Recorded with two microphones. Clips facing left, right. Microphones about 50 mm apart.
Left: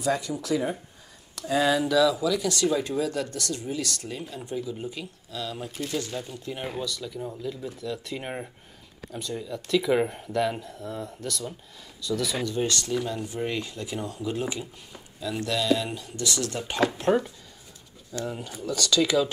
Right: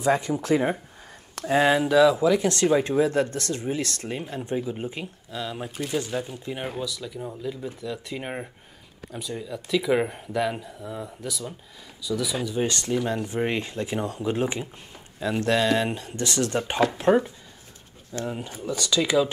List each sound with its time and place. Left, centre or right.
0.0 s speech: right
6.8 s speech: centre
12.6 s speech: right
16.9 s speech: centre